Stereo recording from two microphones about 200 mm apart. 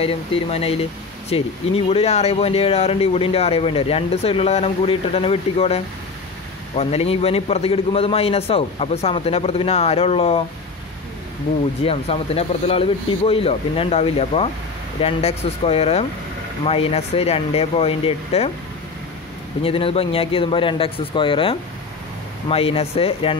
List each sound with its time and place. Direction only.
0.0 s speech: 30° left (ahead or behind)
6.8 s a man's voice: 30° left (ahead or behind)
11.8 s a man's voice: 30° left (ahead or behind)
19.6 s speech: 30° left (ahead or behind)